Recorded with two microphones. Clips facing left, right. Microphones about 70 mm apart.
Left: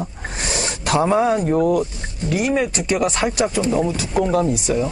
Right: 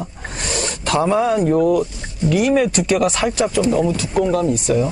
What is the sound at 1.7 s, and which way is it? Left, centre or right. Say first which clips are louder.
Speech: right 2 dB; left.